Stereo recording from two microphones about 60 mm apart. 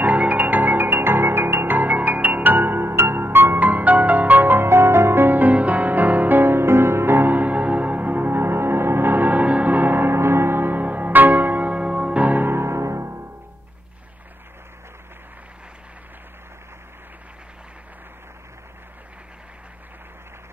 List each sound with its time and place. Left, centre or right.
0.0 s music: right